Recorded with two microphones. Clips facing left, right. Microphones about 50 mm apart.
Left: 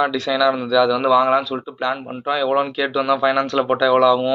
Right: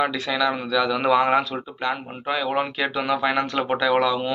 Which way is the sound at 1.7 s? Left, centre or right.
Centre.